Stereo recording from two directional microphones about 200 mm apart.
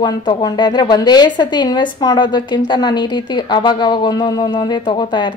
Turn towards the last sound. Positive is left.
turn(degrees=25)  # may be behind; listen again after turning